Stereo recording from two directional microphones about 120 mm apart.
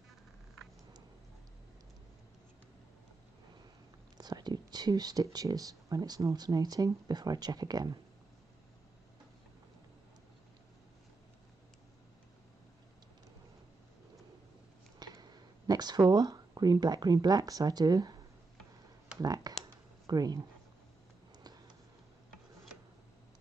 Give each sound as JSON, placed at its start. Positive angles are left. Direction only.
{"t": 4.2, "sound": "speech", "side_deg": -35}
{"t": 15.0, "sound": "speech", "side_deg": -35}
{"t": 19.2, "sound": "speech", "side_deg": -30}
{"t": 19.6, "sound": "a sound", "side_deg": -35}